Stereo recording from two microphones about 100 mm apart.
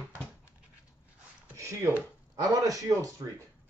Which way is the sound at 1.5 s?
30° right (ahead or behind).